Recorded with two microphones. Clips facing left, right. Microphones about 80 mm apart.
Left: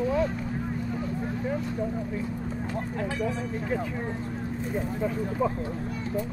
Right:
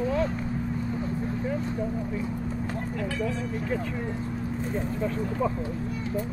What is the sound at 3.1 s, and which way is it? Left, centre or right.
Speech, centre.